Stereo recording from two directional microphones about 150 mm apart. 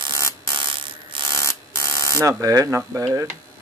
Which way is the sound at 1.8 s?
20° right (ahead or behind).